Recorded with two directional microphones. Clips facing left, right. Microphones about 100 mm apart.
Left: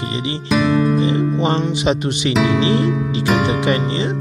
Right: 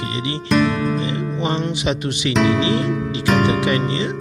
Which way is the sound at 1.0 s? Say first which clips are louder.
Left 5 dB; 30° left (ahead or behind).